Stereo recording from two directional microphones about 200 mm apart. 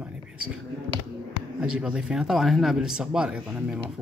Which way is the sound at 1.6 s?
5° right (ahead or behind).